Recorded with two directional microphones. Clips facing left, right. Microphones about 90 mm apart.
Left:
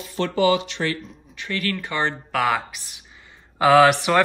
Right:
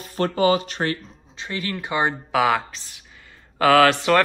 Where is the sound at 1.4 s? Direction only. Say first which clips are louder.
Left 2 dB; 20° right (ahead or behind).